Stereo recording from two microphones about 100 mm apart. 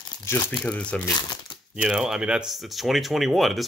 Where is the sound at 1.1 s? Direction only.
40° left (ahead or behind).